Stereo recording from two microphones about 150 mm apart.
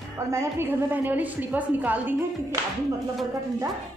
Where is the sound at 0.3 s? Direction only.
15° right (ahead or behind).